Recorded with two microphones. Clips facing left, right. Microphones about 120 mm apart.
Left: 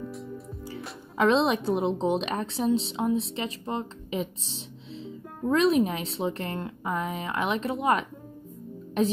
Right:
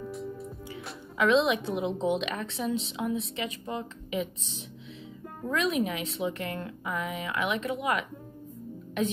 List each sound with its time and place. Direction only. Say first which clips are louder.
0.0 s music: right 1 dB; centre (ahead or behind)
1.1 s a woman's voice: left 1 dB; 35° left (ahead or behind)